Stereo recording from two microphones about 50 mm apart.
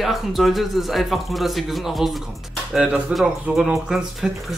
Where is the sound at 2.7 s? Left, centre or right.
Right.